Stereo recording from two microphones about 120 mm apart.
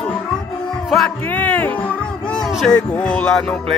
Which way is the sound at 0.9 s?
10° left (ahead or behind).